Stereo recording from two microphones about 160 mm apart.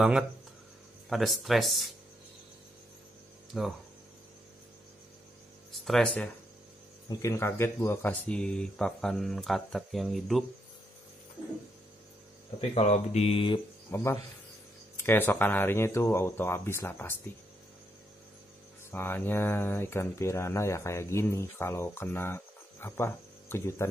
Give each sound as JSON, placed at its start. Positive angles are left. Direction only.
{"t": 1.0, "sound": "speech", "side_deg": 0}
{"t": 3.5, "sound": "speech", "side_deg": -5}
{"t": 5.9, "sound": "speech", "side_deg": 5}
{"t": 7.1, "sound": "speech", "side_deg": 20}
{"t": 12.5, "sound": "speech", "side_deg": 40}
{"t": 13.8, "sound": "speech", "side_deg": 15}
{"t": 18.9, "sound": "speech", "side_deg": 15}